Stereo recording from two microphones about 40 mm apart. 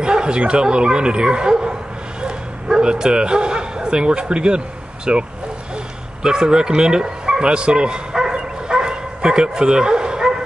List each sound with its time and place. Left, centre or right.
0.0 s a sound: right
0.4 s speech: right
2.2 s bow-wow: right
5.1 s speech: right
6.2 s bow-wow: centre